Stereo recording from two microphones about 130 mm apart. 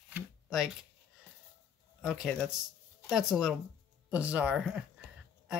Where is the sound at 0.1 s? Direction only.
5° right (ahead or behind).